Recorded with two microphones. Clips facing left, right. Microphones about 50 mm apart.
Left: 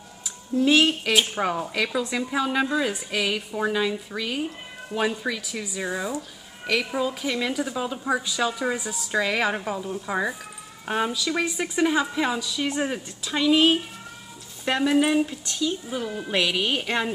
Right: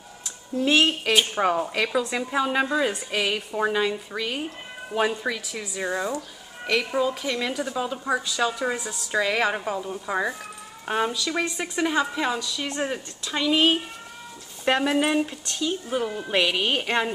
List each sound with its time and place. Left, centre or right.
0.2 s a woman's voice: centre
15.6 s speech: centre
16.1 s speech: centre